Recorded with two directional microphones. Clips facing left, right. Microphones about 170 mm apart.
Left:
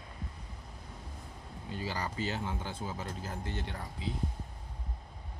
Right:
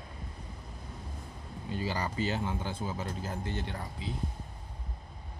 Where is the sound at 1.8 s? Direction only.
20° right (ahead or behind).